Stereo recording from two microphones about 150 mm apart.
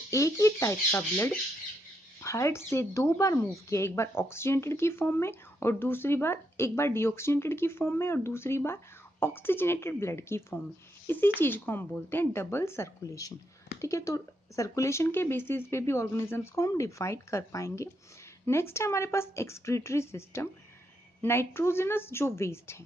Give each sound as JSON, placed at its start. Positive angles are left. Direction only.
{"t": 0.1, "sound": "speech", "side_deg": 20}